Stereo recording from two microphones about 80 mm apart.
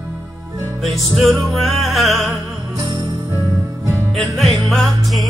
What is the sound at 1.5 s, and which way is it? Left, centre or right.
Music, centre.